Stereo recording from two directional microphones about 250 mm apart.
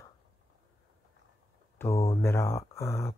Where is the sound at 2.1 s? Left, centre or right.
Centre.